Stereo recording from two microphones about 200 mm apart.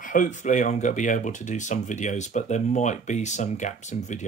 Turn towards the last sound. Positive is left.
turn(degrees=35)  # may be behind; listen again after turning